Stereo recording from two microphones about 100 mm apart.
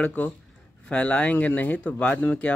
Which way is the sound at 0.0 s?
15° left (ahead or behind).